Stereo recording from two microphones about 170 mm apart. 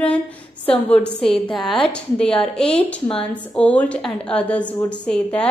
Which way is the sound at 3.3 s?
5° left (ahead or behind).